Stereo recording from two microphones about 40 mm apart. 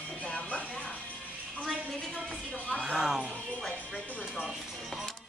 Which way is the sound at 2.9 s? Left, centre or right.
Centre.